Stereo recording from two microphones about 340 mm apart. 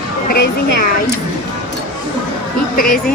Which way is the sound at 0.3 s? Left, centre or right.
Left.